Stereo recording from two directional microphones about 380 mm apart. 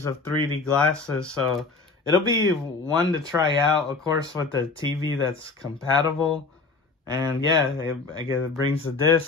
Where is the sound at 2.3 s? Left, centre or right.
Centre.